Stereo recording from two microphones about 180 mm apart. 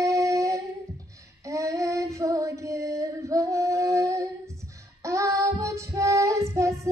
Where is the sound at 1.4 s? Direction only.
15° right (ahead or behind).